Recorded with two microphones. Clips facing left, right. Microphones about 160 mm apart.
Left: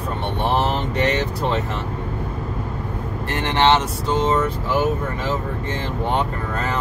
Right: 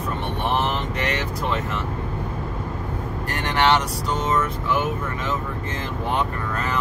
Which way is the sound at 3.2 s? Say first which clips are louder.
Left 3 dB; 25° left (ahead or behind).